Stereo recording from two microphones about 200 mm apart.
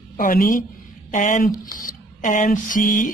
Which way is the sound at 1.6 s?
45° left (ahead or behind).